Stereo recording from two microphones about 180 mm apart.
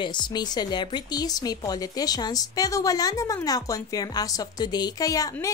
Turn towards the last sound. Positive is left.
turn(degrees=20)  # may be behind; listen again after turning